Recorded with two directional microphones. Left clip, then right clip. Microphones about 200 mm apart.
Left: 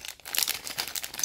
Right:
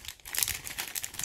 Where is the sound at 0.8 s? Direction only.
10° left (ahead or behind).